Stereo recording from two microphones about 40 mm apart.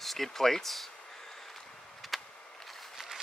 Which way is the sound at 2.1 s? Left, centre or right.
Centre.